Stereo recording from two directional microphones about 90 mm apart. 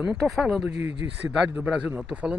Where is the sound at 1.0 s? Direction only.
30° right (ahead or behind).